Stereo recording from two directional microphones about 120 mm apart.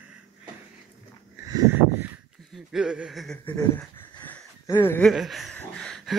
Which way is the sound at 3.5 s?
20° left (ahead or behind).